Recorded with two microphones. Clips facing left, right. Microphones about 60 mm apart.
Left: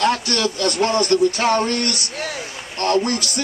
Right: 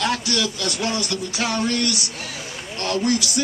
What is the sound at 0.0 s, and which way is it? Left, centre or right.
A man's voice, left.